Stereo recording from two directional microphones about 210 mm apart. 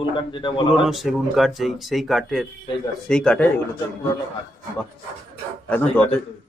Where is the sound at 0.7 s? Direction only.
Centre (ahead or behind).